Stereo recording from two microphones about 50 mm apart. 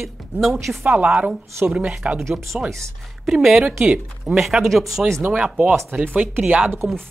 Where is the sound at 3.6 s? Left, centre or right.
Right.